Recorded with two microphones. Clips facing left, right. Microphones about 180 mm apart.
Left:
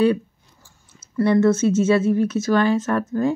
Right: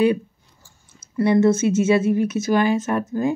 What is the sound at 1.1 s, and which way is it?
Speech, 15° right (ahead or behind).